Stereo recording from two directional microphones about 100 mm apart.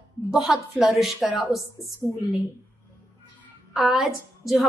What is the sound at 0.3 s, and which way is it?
A woman's voice, 5° right (ahead or behind).